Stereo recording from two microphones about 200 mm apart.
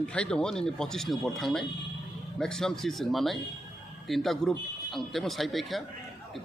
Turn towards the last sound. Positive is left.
turn(degrees=0)  # may be behind; listen again after turning